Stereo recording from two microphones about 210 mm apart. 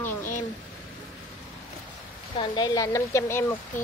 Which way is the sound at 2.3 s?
20° left (ahead or behind).